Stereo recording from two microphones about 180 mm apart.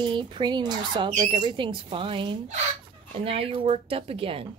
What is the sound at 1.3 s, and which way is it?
Speech, 25° right (ahead or behind).